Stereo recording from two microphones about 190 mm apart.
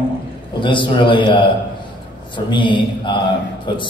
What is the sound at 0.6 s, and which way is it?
A man's voice, 25° left (ahead or behind).